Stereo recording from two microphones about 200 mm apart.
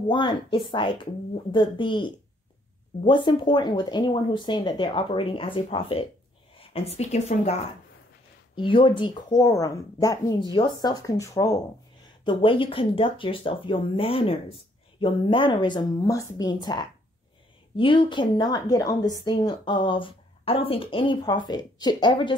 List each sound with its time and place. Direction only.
0.1 s a woman's voice: 25° left (ahead or behind)
8.5 s a woman's voice: 25° left (ahead or behind)
12.3 s a woman's voice: 25° left (ahead or behind)